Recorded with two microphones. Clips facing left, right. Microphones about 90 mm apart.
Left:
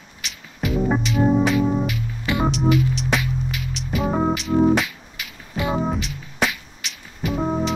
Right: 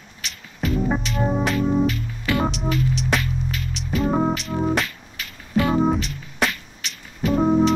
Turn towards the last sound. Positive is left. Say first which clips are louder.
# right 4 dB
turn(degrees=5)  # may be behind; listen again after turning